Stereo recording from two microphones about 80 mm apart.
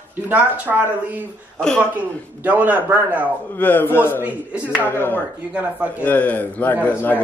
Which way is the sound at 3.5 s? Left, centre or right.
Left.